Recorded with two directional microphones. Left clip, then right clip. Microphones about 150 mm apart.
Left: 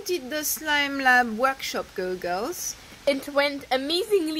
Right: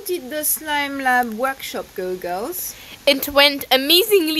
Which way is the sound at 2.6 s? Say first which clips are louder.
Right 6 dB; 20° right (ahead or behind).